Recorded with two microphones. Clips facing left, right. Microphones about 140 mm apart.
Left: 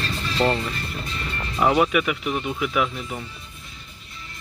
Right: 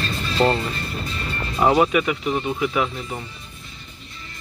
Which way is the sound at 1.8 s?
30° right (ahead or behind).